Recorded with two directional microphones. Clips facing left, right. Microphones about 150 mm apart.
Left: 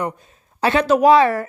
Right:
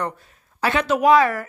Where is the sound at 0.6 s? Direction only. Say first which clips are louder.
Left 5 dB; 30° left (ahead or behind).